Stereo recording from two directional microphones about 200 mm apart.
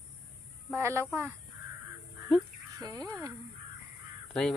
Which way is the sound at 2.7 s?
20° right (ahead or behind).